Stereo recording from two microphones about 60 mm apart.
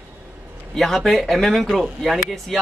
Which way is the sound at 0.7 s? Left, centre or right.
Centre.